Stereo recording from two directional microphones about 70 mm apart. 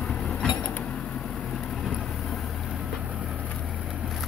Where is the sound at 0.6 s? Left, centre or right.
Left.